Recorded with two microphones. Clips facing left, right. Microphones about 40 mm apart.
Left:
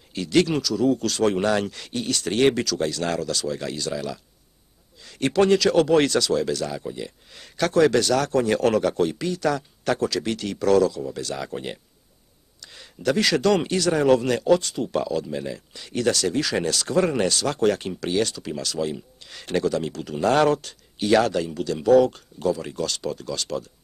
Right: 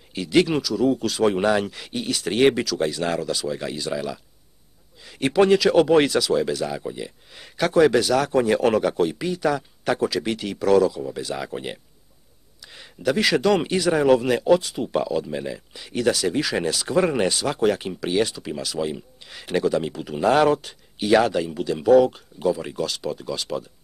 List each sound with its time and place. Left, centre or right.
0.1 s speech: centre